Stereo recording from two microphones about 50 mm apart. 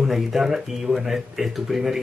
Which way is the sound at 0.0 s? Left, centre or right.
Centre.